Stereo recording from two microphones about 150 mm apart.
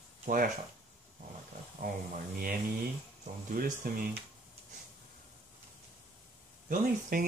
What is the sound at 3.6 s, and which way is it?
Speech, 85° right.